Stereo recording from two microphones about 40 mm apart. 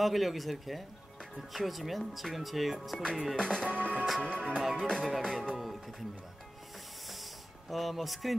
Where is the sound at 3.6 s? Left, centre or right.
Right.